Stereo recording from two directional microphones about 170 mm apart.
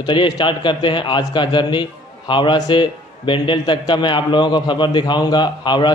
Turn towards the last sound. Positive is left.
turn(degrees=25)  # may be behind; listen again after turning